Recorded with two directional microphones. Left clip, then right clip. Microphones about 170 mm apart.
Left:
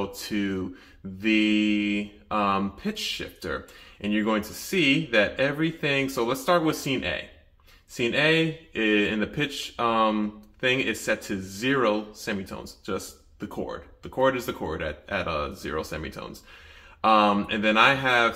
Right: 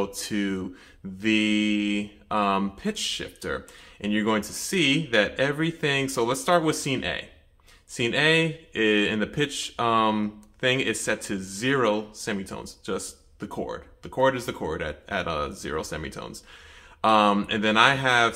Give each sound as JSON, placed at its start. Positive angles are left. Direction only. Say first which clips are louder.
{"t": 0.0, "sound": "speech", "louder": "right 1 dB", "side_deg": -35}